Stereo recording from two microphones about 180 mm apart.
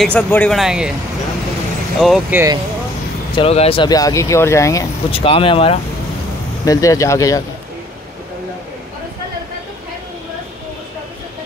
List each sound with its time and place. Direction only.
0.0 s speech: 10° left (ahead or behind)
0.6 s speech: 5° right (ahead or behind)
2.0 s speech: centre (ahead or behind)
2.3 s speech: 20° right (ahead or behind)
3.3 s speech: 35° left (ahead or behind); by 4.8 s 15° left (ahead or behind)
5.1 s speech: 30° left (ahead or behind)
6.6 s speech: 20° left (ahead or behind)